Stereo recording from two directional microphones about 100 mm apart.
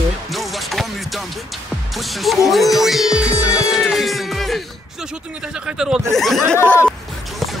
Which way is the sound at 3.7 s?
5° right (ahead or behind).